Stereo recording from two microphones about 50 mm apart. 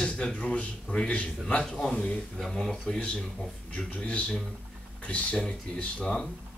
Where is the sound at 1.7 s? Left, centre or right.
Centre.